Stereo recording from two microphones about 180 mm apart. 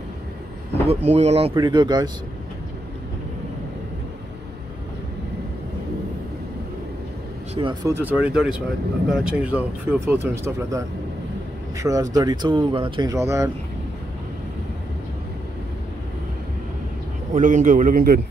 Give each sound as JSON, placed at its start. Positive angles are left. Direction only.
{"t": 0.8, "sound": "speech", "side_deg": -35}
{"t": 1.5, "sound": "speech", "side_deg": -25}
{"t": 7.5, "sound": "speech", "side_deg": -25}
{"t": 7.9, "sound": "speech", "side_deg": -10}
{"t": 11.8, "sound": "speech", "side_deg": -20}
{"t": 13.1, "sound": "speech", "side_deg": -15}
{"t": 17.3, "sound": "a man's voice", "side_deg": -45}